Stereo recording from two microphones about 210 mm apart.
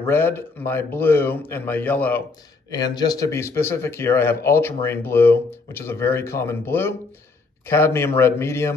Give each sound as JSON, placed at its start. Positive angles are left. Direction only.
{"t": 0.0, "sound": "speech", "side_deg": 10}
{"t": 2.7, "sound": "speech", "side_deg": 20}